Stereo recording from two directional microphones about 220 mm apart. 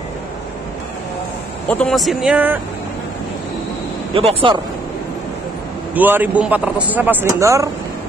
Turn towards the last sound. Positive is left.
turn(degrees=-15)  # may be behind; listen again after turning